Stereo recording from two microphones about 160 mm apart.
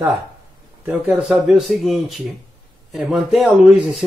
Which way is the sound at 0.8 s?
5° right (ahead or behind).